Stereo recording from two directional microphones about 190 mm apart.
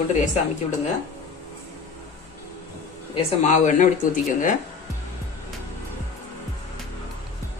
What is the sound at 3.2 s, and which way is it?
Speech, 35° left (ahead or behind).